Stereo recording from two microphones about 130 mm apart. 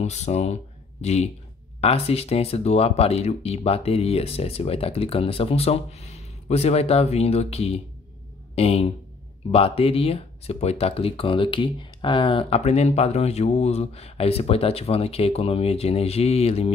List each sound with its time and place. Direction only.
0.0 s speech: 60° left (ahead or behind)